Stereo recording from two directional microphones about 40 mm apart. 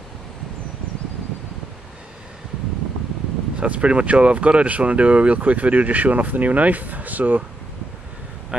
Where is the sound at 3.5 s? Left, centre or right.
Right.